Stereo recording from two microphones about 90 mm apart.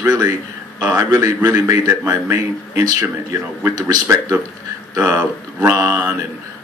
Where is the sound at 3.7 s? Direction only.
40° right (ahead or behind).